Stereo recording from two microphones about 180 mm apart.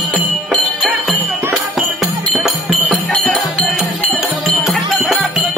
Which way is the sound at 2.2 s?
Centre (ahead or behind).